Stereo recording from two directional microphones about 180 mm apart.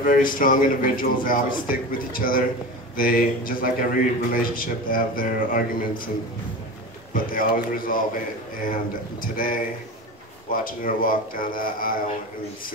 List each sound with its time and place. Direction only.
0.0 s a man's voice: 50° left (ahead or behind)
7.2 s a man's voice: 50° left (ahead or behind)
9.2 s a man's voice: 50° left (ahead or behind)